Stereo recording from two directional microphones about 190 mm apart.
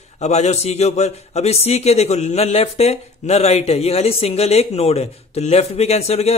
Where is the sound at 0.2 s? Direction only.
35° left (ahead or behind).